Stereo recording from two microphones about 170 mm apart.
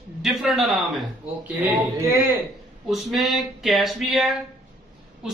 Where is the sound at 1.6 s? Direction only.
15° right (ahead or behind).